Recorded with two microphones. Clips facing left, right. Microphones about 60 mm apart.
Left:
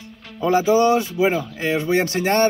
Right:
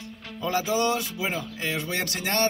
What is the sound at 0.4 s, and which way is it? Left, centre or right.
Speech, left.